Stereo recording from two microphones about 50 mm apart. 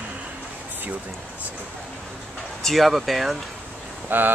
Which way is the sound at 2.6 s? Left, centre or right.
Centre.